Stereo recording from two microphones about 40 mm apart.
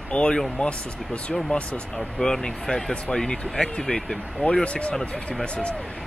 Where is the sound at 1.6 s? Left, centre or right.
Left.